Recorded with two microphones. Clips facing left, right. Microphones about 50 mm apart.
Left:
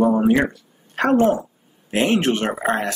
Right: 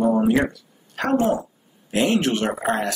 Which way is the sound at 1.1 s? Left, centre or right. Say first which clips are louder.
Left 3 dB; left.